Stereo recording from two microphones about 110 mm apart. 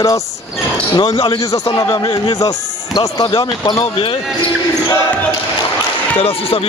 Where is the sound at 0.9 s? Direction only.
50° left (ahead or behind).